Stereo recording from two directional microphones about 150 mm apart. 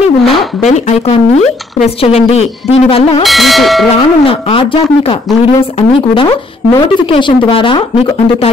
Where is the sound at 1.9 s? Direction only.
40° left (ahead or behind).